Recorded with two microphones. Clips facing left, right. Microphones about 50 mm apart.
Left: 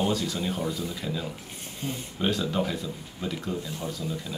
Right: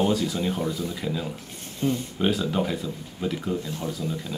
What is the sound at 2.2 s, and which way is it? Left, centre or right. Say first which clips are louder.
Speech: even; centre.